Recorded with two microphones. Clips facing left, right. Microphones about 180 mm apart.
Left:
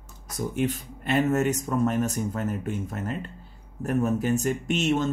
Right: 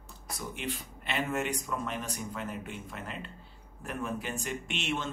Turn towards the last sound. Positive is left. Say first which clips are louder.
# left 10 dB
turn(degrees=40)  # may be behind; listen again after turning